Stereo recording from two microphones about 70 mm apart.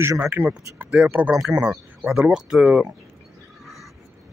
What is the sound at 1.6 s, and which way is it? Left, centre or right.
Speech, centre.